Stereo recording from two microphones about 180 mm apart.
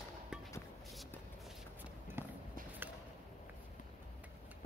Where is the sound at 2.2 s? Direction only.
10° right (ahead or behind).